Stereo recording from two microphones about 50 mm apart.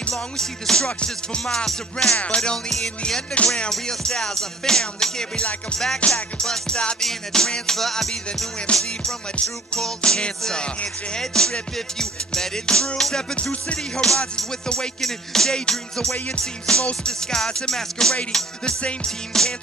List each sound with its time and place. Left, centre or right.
0.1 s music: centre
6.4 s music: centre
8.7 s music: centre